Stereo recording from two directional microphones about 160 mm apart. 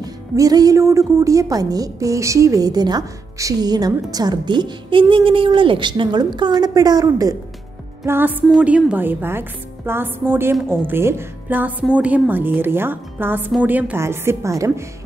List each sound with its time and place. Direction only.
0.0 s a woman's voice: 25° right (ahead or behind)